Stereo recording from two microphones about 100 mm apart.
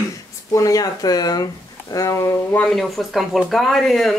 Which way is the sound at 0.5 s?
35° left (ahead or behind).